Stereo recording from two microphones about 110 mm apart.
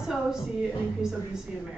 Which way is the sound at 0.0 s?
5° right (ahead or behind).